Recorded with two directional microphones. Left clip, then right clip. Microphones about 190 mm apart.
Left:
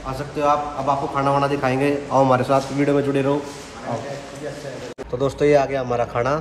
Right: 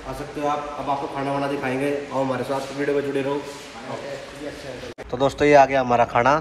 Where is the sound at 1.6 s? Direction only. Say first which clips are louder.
Left 4 dB; 20° left (ahead or behind).